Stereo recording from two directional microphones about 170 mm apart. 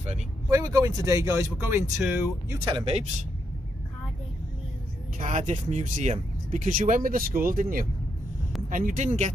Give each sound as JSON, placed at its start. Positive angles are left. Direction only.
{"t": 0.5, "sound": "speech", "side_deg": -20}
{"t": 2.6, "sound": "speech", "side_deg": -30}
{"t": 5.2, "sound": "speech", "side_deg": -45}
{"t": 8.6, "sound": "speech", "side_deg": -50}